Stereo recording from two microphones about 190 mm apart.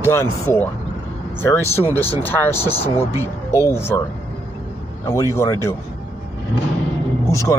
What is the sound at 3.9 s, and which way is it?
Speech, 15° left (ahead or behind).